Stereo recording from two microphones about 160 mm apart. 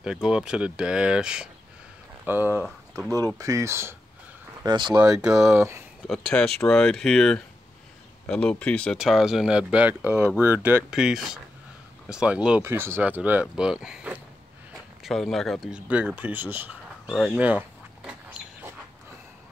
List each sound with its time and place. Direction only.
0.0 s speech: 5° right (ahead or behind)
4.6 s speech: 25° right (ahead or behind)
6.0 s speech: 5° left (ahead or behind)
17.1 s speech: 5° left (ahead or behind)
17.4 s duck: 10° right (ahead or behind)